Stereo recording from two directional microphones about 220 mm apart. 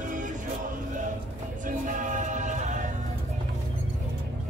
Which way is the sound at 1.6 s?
35° right (ahead or behind).